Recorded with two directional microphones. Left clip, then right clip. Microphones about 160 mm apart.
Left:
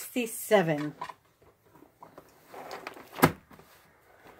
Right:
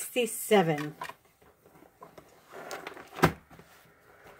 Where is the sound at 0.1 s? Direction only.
15° left (ahead or behind).